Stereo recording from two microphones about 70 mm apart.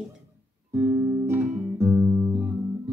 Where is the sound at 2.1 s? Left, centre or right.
Right.